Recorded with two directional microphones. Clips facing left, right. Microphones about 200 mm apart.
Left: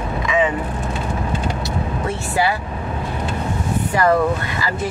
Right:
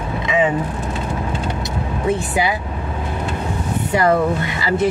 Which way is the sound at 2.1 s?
15° right (ahead or behind).